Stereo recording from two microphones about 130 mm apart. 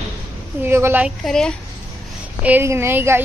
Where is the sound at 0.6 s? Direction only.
15° right (ahead or behind).